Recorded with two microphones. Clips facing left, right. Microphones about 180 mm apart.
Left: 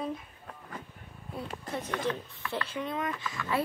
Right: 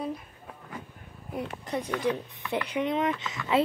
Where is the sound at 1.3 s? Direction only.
15° right (ahead or behind).